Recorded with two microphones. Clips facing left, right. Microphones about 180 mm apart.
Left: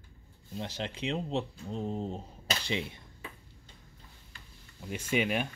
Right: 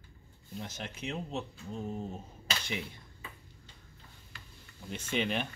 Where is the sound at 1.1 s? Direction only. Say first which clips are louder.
Left 4 dB; 30° left (ahead or behind).